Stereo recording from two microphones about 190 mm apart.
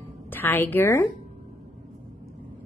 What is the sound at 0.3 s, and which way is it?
Speech, 10° left (ahead or behind).